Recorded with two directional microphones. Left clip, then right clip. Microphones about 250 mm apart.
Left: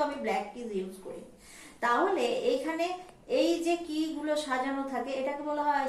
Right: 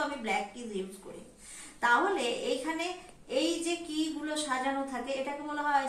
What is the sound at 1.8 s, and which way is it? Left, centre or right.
A woman's voice, centre.